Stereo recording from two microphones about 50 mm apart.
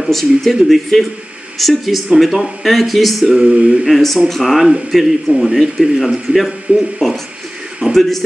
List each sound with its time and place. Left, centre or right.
0.0 s speech: centre
3.3 s a sound: centre
3.8 s a man's voice: centre